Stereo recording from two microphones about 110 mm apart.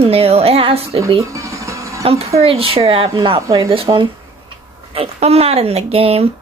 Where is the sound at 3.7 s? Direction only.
55° right (ahead or behind).